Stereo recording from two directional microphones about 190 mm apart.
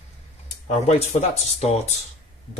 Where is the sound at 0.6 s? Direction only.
35° left (ahead or behind).